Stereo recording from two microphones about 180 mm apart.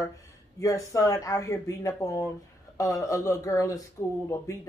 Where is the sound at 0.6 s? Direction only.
20° left (ahead or behind).